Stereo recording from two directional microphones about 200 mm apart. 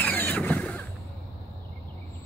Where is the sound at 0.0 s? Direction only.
10° left (ahead or behind).